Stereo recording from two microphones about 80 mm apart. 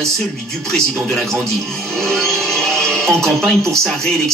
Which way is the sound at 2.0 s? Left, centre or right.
Centre.